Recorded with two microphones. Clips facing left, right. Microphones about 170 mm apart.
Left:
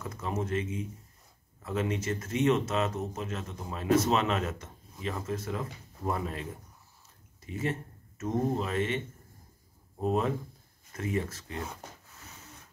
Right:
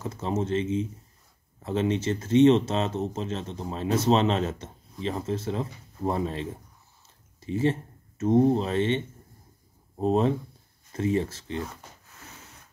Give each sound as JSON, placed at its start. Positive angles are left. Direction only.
{"t": 0.0, "sound": "speech", "side_deg": -30}